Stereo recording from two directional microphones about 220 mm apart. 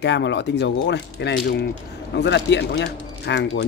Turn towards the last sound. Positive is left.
turn(degrees=50)  # may be behind; listen again after turning